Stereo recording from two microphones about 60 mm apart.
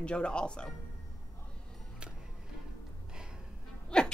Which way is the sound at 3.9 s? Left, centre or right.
Centre.